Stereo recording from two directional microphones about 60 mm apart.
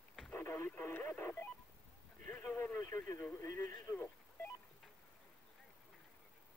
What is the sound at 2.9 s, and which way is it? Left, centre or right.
Speech, left.